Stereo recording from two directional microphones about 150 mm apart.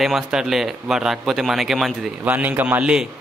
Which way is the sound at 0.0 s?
Centre (ahead or behind).